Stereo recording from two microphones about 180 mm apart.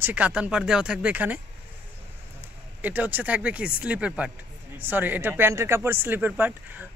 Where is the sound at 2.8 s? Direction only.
10° right (ahead or behind).